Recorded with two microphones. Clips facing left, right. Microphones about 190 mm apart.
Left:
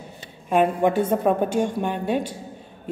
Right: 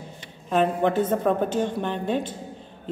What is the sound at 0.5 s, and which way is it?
A woman's voice, 10° left (ahead or behind).